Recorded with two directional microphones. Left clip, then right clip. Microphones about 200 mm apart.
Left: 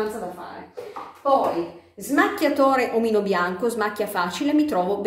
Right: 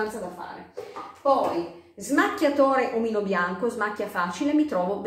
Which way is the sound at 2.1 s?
15° left (ahead or behind).